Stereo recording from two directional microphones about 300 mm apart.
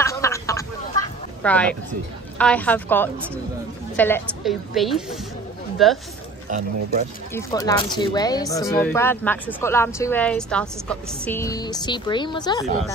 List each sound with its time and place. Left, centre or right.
0.0 s a sound: centre
1.4 s a woman's voice: centre
6.5 s speech: right
7.3 s speech: centre